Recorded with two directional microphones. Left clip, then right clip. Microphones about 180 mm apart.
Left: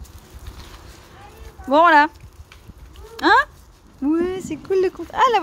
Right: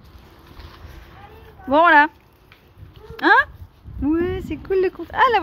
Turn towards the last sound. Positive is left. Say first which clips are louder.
# even
turn(degrees=0)  # may be behind; listen again after turning